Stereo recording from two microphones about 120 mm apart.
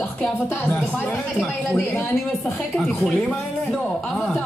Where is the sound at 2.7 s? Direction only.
Centre (ahead or behind).